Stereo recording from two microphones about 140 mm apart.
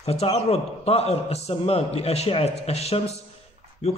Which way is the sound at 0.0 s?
45° left (ahead or behind).